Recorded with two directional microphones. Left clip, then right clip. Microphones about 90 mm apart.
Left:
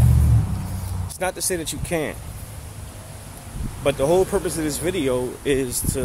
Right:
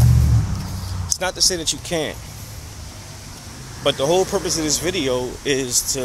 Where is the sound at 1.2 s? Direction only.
65° left (ahead or behind).